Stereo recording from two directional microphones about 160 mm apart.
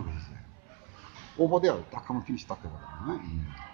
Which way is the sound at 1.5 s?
10° left (ahead or behind).